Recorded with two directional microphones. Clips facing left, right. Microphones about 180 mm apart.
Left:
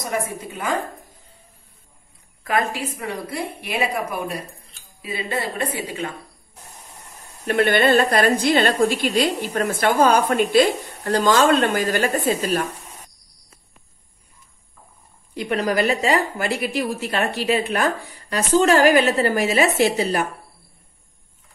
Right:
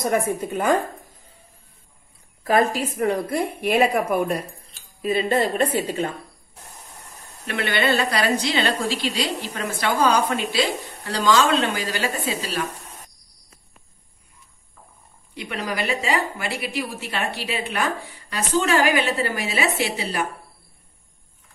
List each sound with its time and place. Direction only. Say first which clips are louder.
0.0 s a woman's voice: right 4 dB; 50° right (ahead or behind)
2.4 s a woman's voice: right 3 dB; 40° right (ahead or behind)
7.4 s a woman's voice: left 6 dB; 45° left (ahead or behind)
15.3 s a woman's voice: left 7 dB; 45° left (ahead or behind)